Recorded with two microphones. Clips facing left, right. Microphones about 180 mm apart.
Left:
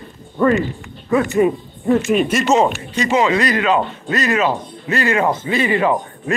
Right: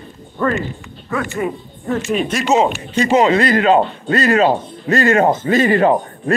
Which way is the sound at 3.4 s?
30° right (ahead or behind).